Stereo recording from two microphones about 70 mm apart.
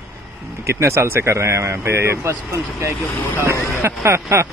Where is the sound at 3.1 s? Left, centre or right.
Left.